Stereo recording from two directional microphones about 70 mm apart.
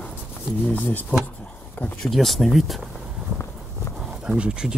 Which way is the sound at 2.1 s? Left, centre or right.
Centre.